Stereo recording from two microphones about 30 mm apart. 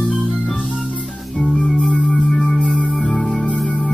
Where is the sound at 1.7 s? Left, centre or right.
Left.